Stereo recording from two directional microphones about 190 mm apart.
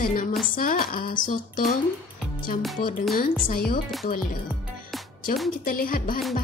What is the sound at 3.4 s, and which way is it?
Speech, 50° left (ahead or behind).